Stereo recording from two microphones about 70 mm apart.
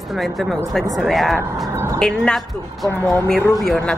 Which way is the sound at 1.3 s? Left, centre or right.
Right.